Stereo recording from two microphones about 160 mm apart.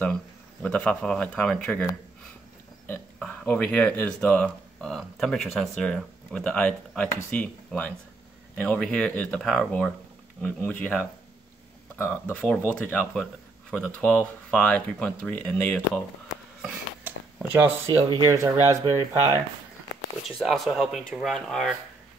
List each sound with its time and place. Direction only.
0.0 s speech: 5° left (ahead or behind)
3.2 s speech: 5° left (ahead or behind)
16.6 s a sound: 10° right (ahead or behind)
18.1 s speech: 20° right (ahead or behind)
20.2 s speech: centre (ahead or behind)